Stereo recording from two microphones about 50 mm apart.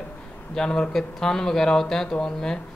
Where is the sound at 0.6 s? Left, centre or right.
Centre.